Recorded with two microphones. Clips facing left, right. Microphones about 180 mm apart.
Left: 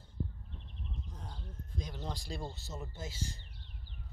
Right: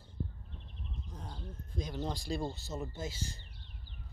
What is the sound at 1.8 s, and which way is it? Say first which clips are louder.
Speech: right 5 dB; 20° right (ahead or behind).